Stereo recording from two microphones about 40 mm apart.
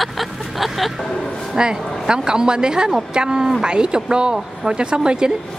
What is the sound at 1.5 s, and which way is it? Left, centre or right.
Speech, right.